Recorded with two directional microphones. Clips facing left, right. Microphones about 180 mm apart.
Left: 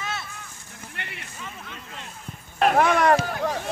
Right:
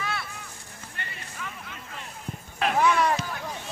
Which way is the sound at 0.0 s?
20° left (ahead or behind).